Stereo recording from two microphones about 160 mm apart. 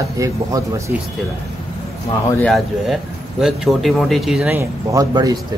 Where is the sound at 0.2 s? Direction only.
20° right (ahead or behind).